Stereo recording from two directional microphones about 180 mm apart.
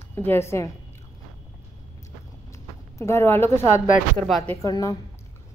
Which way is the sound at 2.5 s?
15° left (ahead or behind).